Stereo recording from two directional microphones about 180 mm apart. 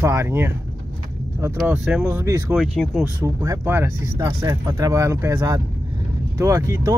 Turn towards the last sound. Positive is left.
turn(degrees=-15)  # may be behind; listen again after turning